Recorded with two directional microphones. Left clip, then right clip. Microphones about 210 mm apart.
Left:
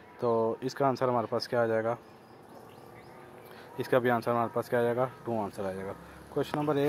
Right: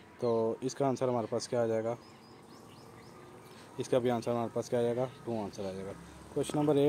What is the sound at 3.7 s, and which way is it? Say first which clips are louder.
Speech: left 4 dB; centre (ahead or behind).